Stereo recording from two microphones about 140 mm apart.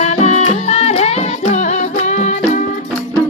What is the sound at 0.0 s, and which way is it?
Music, 50° left (ahead or behind).